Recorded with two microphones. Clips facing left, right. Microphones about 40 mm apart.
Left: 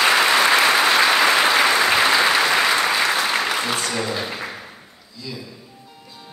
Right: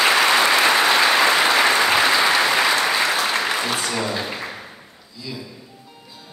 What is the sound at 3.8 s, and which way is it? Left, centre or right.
Music, centre.